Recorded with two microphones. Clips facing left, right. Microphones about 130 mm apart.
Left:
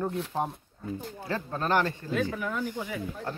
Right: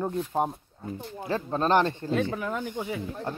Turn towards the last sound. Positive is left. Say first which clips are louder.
# right 2 dB
turn(degrees=-25)  # may be behind; listen again after turning